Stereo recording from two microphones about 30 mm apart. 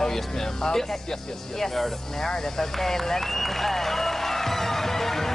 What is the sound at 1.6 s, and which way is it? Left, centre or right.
Snake, centre.